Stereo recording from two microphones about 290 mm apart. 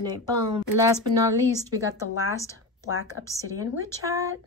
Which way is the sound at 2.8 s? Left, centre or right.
Left.